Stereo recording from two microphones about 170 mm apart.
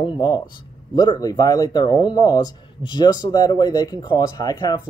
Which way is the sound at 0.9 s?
25° left (ahead or behind).